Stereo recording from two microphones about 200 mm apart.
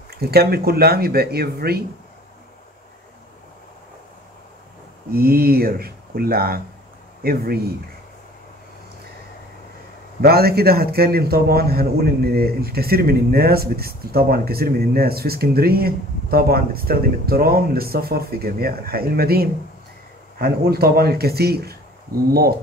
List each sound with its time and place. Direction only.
0.1 s a man's voice: 50° right (ahead or behind)
5.1 s a man's voice: 50° right (ahead or behind)
10.2 s a man's voice: 50° right (ahead or behind)